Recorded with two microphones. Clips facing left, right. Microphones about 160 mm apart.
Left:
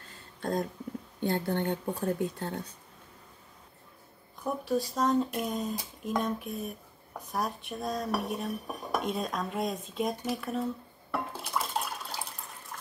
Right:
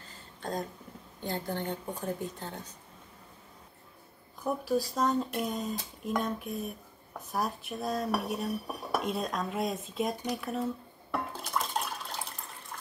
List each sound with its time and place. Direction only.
1.2 s a woman's voice: 60° left (ahead or behind)
4.4 s speech: centre (ahead or behind)
7.3 s cutlery: centre (ahead or behind)